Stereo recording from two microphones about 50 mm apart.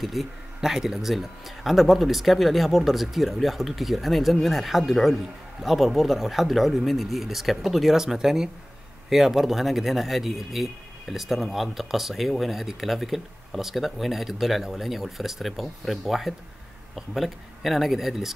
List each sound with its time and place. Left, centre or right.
0.0 s speech: centre